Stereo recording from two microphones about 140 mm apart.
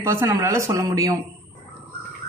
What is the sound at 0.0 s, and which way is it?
Speech, 20° right (ahead or behind).